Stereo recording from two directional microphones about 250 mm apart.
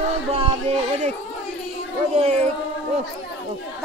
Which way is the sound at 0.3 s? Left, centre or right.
Right.